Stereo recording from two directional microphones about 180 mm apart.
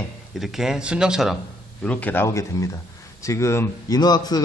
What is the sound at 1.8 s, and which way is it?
A man's voice, 10° left (ahead or behind).